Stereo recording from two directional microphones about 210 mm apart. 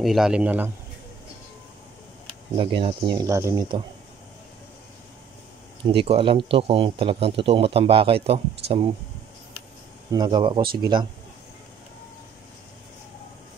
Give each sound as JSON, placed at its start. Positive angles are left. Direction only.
{"t": 0.0, "sound": "a man's voice", "side_deg": 0}
{"t": 2.5, "sound": "speech", "side_deg": -25}
{"t": 5.9, "sound": "speech", "side_deg": -25}
{"t": 10.1, "sound": "speech", "side_deg": -20}